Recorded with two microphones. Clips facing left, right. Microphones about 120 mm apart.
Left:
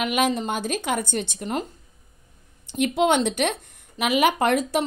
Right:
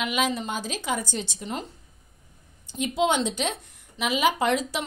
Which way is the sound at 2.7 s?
60° left (ahead or behind).